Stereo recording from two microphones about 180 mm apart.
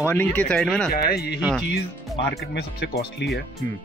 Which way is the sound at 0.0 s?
10° left (ahead or behind).